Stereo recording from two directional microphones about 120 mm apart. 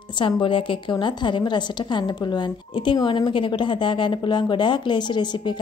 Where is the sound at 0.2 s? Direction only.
45° left (ahead or behind).